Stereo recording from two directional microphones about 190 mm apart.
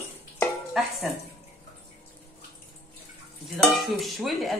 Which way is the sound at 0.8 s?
Centre (ahead or behind).